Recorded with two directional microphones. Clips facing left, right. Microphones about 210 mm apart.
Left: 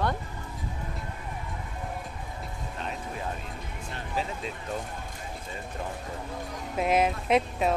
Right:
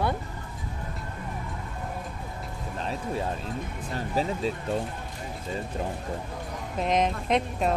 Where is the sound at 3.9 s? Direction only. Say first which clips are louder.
Right 5 dB; 40° right (ahead or behind).